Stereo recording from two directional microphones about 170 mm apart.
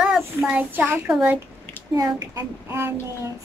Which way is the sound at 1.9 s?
20° right (ahead or behind).